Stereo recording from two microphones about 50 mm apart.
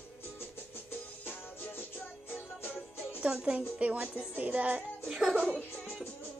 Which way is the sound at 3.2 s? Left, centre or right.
Right.